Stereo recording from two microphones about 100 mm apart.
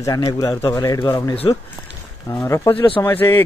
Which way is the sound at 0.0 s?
40° left (ahead or behind).